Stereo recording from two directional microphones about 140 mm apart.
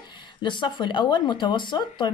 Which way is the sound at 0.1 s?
35° left (ahead or behind).